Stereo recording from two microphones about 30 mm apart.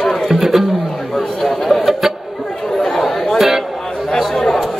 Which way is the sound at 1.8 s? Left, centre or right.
Centre.